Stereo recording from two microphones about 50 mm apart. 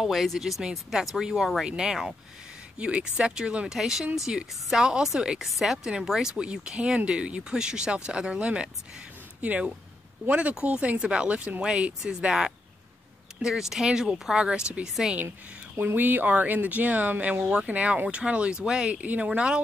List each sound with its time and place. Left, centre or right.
0.0 s speech: centre
2.8 s speech: right
15.8 s speech: right; by 19.6 s centre